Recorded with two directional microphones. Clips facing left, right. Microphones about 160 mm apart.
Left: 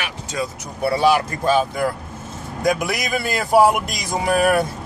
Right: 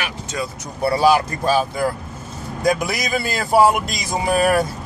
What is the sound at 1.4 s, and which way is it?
Speech, 5° right (ahead or behind).